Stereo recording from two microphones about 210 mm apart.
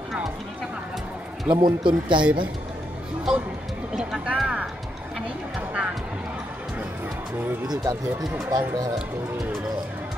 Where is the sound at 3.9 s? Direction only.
5° right (ahead or behind).